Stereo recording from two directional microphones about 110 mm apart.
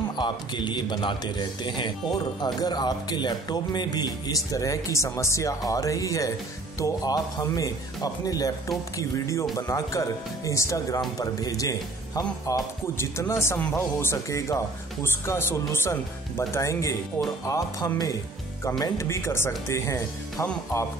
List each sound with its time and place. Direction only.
0.1 s a man's voice: 45° left (ahead or behind)
12.9 s a man's voice: 25° left (ahead or behind)